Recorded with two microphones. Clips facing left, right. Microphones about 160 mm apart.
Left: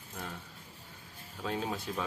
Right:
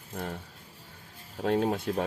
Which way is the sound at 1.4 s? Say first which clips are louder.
Right 9 dB; 55° right (ahead or behind).